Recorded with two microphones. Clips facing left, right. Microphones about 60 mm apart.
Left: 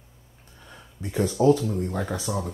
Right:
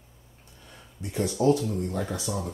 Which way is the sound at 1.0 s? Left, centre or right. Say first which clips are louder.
Left 3 dB; left.